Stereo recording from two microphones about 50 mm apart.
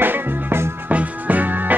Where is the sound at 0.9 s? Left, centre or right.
Right.